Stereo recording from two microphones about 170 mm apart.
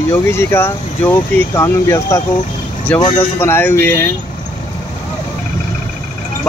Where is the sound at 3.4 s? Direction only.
15° left (ahead or behind).